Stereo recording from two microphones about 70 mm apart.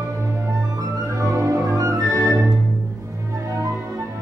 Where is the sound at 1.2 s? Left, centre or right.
Right.